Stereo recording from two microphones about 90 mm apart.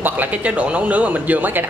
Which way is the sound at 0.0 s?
20° right (ahead or behind).